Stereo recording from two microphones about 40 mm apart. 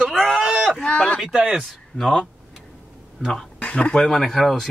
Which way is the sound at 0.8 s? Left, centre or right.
Left.